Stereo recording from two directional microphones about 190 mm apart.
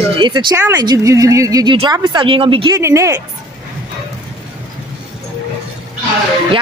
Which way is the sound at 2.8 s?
15° right (ahead or behind).